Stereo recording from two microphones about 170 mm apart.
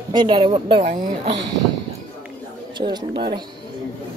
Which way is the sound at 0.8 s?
50° right (ahead or behind).